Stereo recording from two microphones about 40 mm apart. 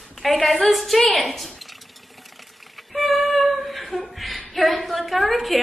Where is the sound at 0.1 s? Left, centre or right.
Centre.